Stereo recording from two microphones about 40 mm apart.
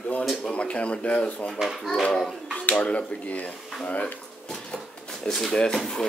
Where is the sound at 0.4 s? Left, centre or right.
Left.